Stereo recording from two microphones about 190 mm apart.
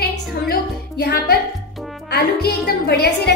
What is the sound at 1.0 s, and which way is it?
Music, 55° left (ahead or behind).